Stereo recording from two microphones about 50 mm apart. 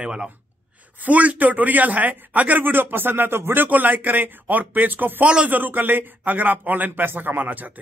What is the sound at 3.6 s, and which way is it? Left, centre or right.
A man's voice, right.